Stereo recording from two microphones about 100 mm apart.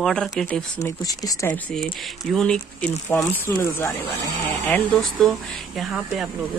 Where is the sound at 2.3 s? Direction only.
5° left (ahead or behind).